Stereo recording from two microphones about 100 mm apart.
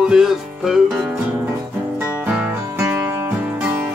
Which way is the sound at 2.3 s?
20° right (ahead or behind).